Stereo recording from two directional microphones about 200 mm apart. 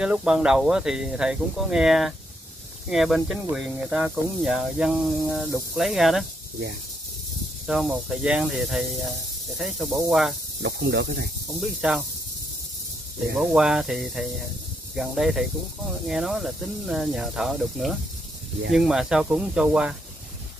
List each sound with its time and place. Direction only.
0.0 s speech: 5° right (ahead or behind)
7.6 s speech: 5° right (ahead or behind)
10.6 s speech: 55° right (ahead or behind)
11.6 s speech: centre (ahead or behind)
13.2 s speech: centre (ahead or behind)